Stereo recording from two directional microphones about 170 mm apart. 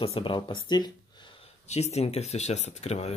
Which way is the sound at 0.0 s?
30° left (ahead or behind).